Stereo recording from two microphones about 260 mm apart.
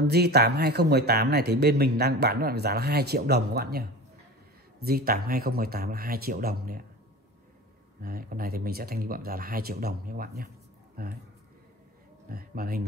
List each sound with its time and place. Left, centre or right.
0.0 s speech: right
4.8 s speech: right
8.0 s speech: right
12.3 s speech: right